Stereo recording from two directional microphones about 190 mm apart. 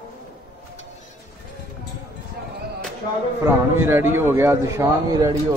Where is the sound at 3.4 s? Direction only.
10° right (ahead or behind).